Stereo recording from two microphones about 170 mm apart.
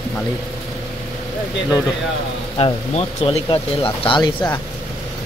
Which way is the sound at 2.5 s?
35° left (ahead or behind).